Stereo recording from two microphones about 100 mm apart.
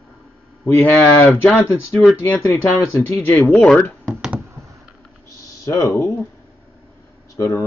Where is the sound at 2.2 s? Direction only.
15° left (ahead or behind).